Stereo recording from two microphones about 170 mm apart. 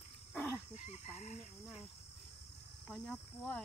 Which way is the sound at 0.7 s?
45° left (ahead or behind).